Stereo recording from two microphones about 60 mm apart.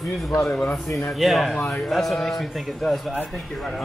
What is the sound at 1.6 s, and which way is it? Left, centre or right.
Speech, left.